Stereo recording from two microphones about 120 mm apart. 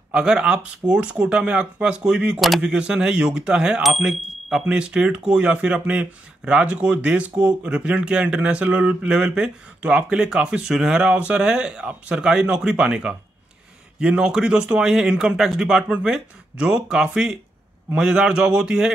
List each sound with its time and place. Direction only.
0.1 s speech: 5° right (ahead or behind)